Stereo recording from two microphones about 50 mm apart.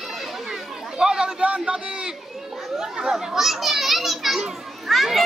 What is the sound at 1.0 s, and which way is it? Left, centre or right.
Chatter, centre.